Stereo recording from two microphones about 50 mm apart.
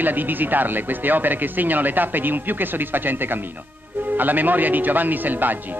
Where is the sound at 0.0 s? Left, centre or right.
Right.